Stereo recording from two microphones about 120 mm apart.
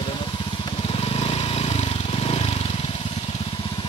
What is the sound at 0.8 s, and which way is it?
Vehicle, 50° left (ahead or behind).